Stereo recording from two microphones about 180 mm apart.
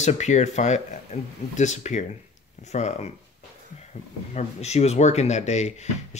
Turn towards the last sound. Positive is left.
turn(degrees=40)  # may be behind; listen again after turning